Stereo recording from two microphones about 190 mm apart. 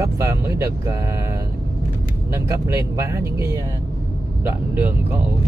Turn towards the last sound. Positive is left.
turn(degrees=-10)  # may be behind; listen again after turning